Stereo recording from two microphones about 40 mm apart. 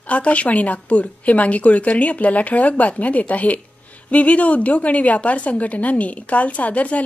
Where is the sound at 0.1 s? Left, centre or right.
Left.